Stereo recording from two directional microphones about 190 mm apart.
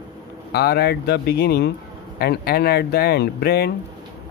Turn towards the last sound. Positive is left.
turn(degrees=55)  # may be behind; listen again after turning